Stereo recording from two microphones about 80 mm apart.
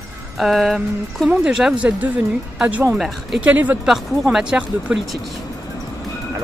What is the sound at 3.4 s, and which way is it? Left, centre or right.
Speech, right.